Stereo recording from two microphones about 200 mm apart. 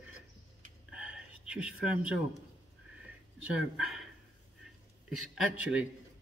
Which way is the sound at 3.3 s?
5° right (ahead or behind).